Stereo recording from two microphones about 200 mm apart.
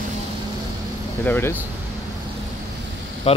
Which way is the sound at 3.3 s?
30° left (ahead or behind).